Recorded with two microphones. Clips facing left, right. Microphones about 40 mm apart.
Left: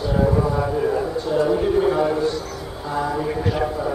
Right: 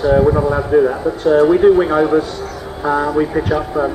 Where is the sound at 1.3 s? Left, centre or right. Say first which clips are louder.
Right 11 dB; right.